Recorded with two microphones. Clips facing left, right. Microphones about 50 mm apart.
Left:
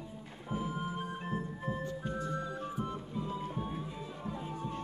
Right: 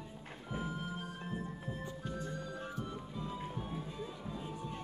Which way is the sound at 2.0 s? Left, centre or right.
Left.